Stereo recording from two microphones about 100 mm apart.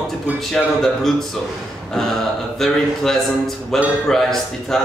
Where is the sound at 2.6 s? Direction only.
5° left (ahead or behind).